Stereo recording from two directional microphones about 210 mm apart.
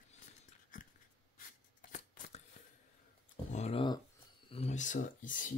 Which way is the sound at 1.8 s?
40° left (ahead or behind).